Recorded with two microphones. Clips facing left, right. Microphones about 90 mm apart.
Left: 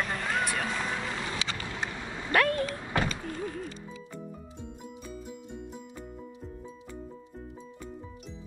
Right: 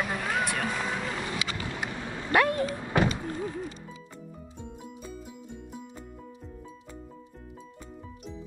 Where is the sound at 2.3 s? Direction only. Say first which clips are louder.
Right 2 dB; 20° right (ahead or behind).